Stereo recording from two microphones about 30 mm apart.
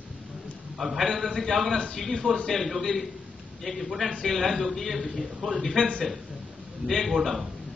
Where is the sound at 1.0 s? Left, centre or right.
Centre.